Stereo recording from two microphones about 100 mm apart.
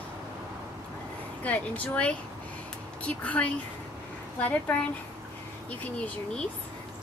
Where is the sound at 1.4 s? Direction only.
15° left (ahead or behind).